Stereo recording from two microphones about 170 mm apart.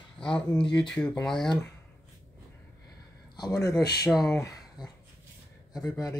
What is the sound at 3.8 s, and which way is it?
Speech, 70° left (ahead or behind).